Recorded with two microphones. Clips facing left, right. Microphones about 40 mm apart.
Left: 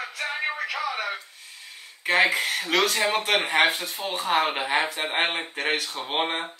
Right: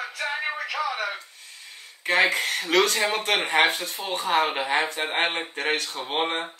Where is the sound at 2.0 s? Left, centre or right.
Centre.